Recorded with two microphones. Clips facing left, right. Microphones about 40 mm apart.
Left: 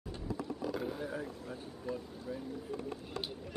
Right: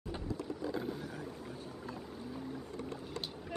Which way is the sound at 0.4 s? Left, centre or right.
Centre.